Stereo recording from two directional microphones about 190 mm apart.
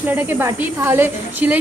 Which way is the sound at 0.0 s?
10° right (ahead or behind).